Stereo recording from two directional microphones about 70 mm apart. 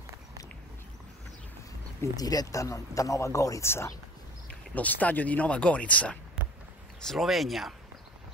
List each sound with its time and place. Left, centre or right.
2.1 s speech: left
3.6 s speech: left
4.5 s speech: left
7.0 s speech: centre